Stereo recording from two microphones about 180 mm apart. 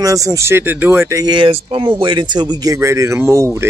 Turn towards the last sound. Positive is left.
turn(degrees=-15)  # may be behind; listen again after turning